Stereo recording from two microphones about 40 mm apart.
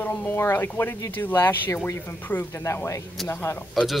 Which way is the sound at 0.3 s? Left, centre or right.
Left.